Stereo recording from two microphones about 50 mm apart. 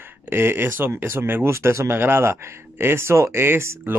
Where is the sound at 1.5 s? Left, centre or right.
Right.